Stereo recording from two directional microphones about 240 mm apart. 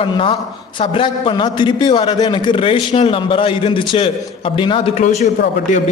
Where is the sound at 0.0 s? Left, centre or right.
Left.